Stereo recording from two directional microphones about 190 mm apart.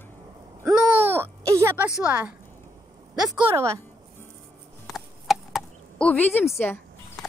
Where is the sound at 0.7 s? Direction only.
10° right (ahead or behind).